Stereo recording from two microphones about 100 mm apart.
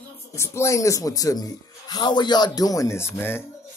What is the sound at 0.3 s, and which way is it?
A man's voice, 30° left (ahead or behind).